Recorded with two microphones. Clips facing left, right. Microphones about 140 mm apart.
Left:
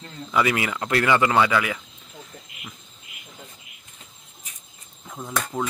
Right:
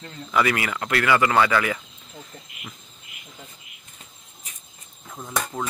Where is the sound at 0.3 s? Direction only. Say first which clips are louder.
Even; 20° left (ahead or behind).